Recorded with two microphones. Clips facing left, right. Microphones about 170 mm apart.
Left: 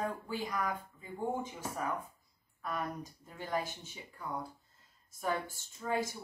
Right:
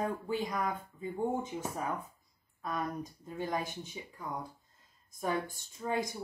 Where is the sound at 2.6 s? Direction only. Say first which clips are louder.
Right 2 dB; 20° right (ahead or behind).